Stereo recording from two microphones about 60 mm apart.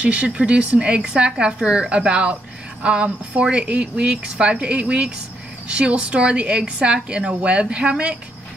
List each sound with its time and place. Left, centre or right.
0.0 s a woman's voice: centre